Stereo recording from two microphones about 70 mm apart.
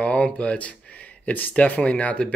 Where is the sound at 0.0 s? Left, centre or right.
Centre.